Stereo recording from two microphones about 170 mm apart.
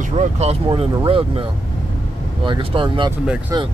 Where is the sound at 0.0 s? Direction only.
45° right (ahead or behind).